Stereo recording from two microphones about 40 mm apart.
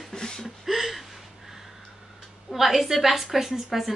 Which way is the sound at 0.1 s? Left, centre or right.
Centre.